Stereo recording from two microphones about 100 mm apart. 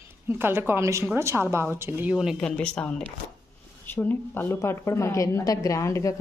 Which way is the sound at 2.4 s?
10° left (ahead or behind).